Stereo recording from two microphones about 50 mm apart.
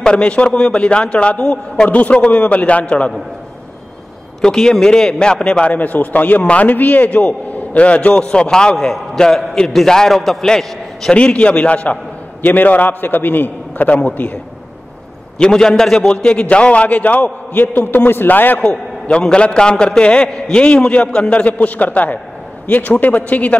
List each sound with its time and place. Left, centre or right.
0.0 s a man's voice: centre
4.4 s a man's voice: centre
5.8 s a man's voice: left
8.1 s a man's voice: centre
8.7 s a man's voice: centre
11.1 s a man's voice: left
15.3 s a man's voice: centre; by 18.6 s left
18.6 s a man's voice: centre